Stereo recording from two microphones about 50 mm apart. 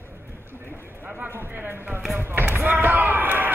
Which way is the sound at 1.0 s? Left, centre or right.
Right.